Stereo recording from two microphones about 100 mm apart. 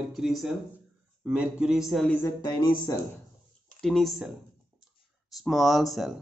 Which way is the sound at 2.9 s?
35° left (ahead or behind).